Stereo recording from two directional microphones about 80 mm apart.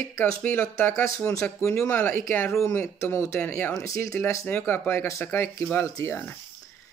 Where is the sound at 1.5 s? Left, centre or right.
Left.